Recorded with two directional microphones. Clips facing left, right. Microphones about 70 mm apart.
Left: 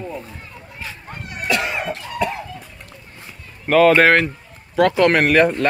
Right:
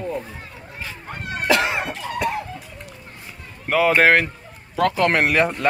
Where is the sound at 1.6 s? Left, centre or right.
Centre.